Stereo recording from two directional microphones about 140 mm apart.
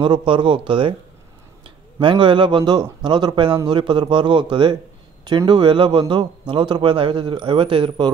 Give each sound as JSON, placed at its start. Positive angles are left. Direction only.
{"t": 0.0, "sound": "speech", "side_deg": -35}